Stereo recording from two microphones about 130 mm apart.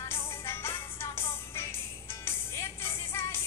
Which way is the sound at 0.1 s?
20° left (ahead or behind).